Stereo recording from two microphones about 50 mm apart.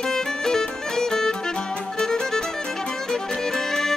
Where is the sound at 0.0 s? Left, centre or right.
Centre.